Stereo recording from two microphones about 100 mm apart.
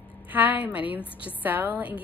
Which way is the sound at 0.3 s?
15° right (ahead or behind).